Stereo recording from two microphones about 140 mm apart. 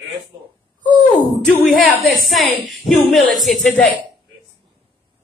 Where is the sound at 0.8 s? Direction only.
75° left (ahead or behind).